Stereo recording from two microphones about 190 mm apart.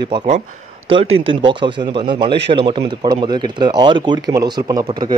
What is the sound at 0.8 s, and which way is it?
Speech, 30° right (ahead or behind).